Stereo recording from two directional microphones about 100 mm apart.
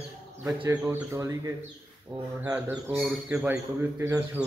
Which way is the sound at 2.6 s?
20° right (ahead or behind).